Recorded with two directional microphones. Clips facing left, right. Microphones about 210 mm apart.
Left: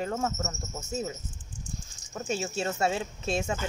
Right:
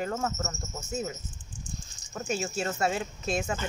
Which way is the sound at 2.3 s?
25° left (ahead or behind).